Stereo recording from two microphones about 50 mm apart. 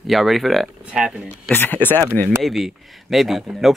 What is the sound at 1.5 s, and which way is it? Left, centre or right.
Speech, left.